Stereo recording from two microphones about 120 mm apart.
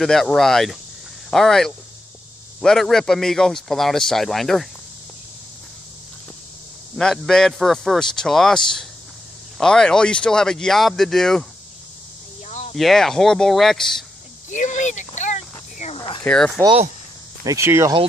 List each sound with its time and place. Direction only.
0.0 s a man's voice: 5° left (ahead or behind)
7.0 s a man's voice: 5° left (ahead or behind)
12.4 s a sound: 70° left (ahead or behind)
12.7 s a man's voice: centre (ahead or behind)
14.5 s a sound: 90° left; by 16.0 s 75° left (ahead or behind)
16.3 s a man's voice: 5° left (ahead or behind)
17.5 s speech: 20° right (ahead or behind)